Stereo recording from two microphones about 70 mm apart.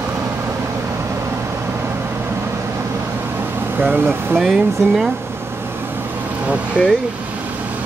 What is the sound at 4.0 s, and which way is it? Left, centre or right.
Speech, right.